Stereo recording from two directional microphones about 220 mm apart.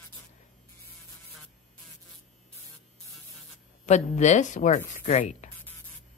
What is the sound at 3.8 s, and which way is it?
Speech, 30° left (ahead or behind).